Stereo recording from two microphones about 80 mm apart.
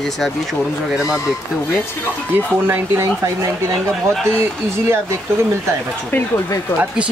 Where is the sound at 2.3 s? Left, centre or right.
Right.